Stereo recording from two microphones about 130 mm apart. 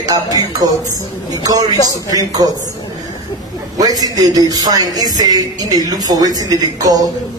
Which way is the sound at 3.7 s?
30° right (ahead or behind).